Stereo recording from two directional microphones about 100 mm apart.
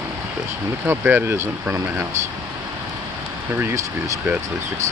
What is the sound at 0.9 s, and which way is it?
Speech, 20° right (ahead or behind).